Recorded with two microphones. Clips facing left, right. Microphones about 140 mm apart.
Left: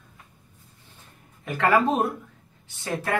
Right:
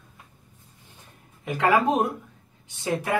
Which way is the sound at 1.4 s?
15° right (ahead or behind).